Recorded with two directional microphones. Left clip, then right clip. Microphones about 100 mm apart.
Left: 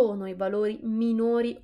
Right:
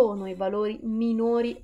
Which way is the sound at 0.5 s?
35° left (ahead or behind).